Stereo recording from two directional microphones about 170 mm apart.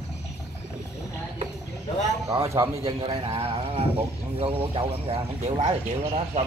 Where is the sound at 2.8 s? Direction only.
35° right (ahead or behind).